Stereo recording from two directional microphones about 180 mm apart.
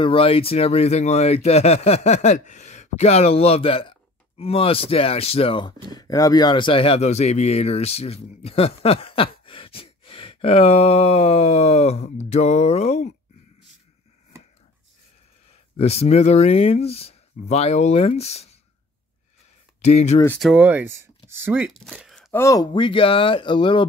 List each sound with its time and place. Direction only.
0.0 s speech: 30° left (ahead or behind)
15.7 s speech: 35° left (ahead or behind)
19.8 s speech: 35° left (ahead or behind)
20.2 s speech: centre (ahead or behind)
21.6 s speech: centre (ahead or behind)
22.3 s speech: 15° left (ahead or behind)